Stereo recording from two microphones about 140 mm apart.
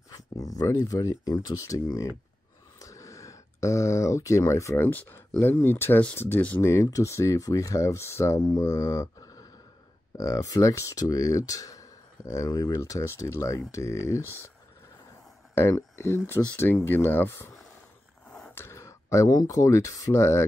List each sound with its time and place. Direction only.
0.4 s speech: 25° left (ahead or behind)
15.5 s speech: 15° left (ahead or behind)